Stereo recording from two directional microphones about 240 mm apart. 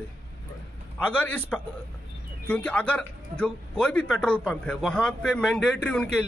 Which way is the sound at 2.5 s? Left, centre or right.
Centre.